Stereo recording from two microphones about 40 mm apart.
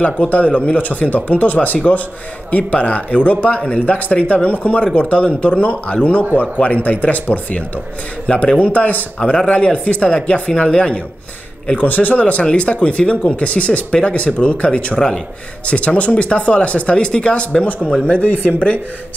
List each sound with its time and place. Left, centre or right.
0.0 s speech: left
8.3 s speech: left
11.7 s speech: left